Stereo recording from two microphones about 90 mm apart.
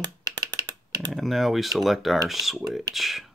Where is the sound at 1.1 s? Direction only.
Centre (ahead or behind).